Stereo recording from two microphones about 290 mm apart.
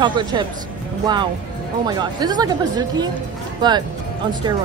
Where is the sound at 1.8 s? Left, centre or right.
Centre.